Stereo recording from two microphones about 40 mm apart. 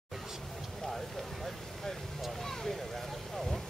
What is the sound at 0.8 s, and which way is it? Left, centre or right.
Vehicle, centre.